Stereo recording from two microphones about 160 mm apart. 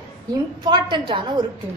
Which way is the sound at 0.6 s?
30° right (ahead or behind).